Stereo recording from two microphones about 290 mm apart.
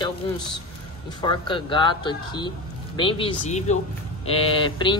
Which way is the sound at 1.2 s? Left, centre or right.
Centre.